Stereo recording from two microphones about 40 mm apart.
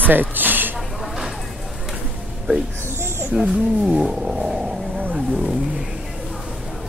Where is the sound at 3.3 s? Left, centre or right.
Right.